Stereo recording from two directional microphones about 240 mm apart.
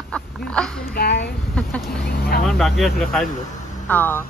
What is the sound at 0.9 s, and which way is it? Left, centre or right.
Speech, left.